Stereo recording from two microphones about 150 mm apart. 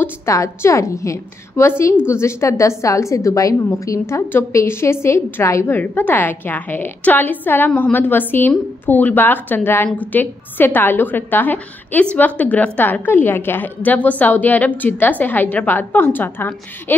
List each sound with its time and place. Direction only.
0.0 s a woman's voice: 20° left (ahead or behind)